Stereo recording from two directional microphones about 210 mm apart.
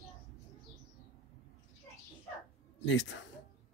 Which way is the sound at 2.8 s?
60° left (ahead or behind).